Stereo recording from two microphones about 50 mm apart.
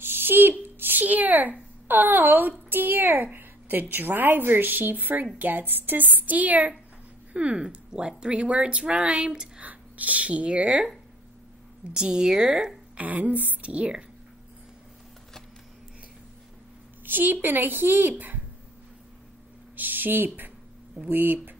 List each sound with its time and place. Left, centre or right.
0.0 s speech: right
7.3 s speech: right
9.6 s speech: right
11.9 s a woman's voice: centre
12.9 s speech: right
17.0 s speech: right
19.7 s speech: right